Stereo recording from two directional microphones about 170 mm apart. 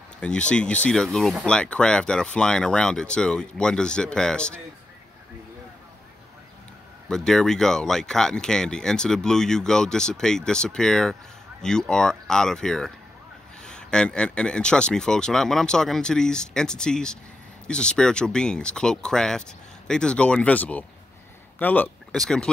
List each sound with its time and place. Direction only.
0.2 s speech: 5° left (ahead or behind)
7.1 s speech: 5° left (ahead or behind)